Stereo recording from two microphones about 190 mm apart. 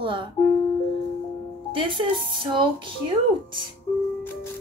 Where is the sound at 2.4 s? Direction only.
25° right (ahead or behind).